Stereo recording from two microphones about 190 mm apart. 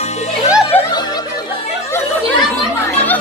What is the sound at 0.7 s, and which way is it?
Music, 10° left (ahead or behind).